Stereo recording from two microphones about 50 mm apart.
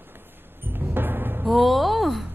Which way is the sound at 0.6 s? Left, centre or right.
Right.